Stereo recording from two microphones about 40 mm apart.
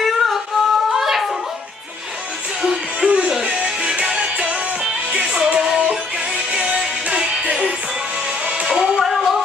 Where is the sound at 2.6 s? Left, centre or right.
Centre.